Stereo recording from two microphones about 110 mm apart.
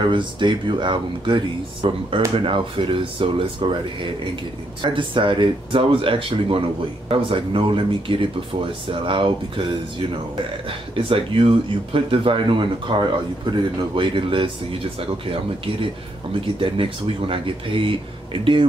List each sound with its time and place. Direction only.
0.0 s speech: 45° right (ahead or behind)
4.8 s speech: 50° right (ahead or behind)
16.3 s speech: 50° right (ahead or behind)